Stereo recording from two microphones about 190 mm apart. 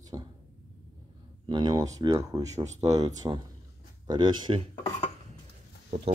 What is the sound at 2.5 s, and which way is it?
Speech, 35° right (ahead or behind).